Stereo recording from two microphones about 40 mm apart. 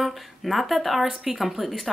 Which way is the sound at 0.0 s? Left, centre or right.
Centre.